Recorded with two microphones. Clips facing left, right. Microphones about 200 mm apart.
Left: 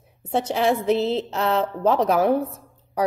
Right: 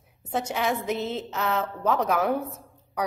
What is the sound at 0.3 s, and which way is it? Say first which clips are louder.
A woman's voice: left 6 dB; 30° left (ahead or behind).